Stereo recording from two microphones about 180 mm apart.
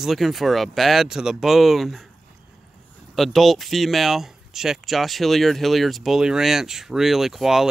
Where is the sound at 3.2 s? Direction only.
Centre (ahead or behind).